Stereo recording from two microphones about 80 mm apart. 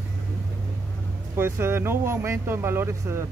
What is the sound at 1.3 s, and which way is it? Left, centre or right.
Speech, right.